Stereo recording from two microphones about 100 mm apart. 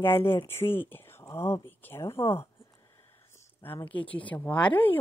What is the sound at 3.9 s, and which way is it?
Speech, 15° left (ahead or behind).